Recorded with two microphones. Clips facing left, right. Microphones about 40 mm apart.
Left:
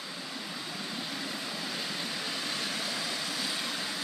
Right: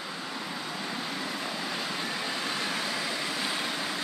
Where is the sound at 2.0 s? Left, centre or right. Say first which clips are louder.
Right 3 dB; centre.